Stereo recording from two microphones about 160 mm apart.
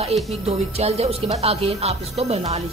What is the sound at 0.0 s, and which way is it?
Speech, 40° right (ahead or behind).